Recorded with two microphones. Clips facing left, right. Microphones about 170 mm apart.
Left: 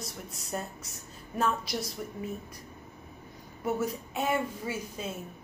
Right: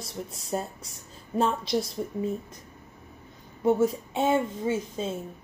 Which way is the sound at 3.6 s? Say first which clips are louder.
Right 8 dB; 30° right (ahead or behind).